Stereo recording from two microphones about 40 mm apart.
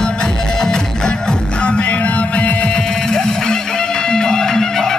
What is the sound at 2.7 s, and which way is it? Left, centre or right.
Music, centre.